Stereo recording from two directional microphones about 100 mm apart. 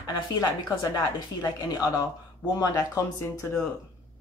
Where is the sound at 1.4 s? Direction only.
40° left (ahead or behind).